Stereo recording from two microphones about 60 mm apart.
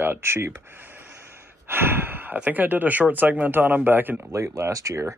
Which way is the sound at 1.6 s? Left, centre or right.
Right.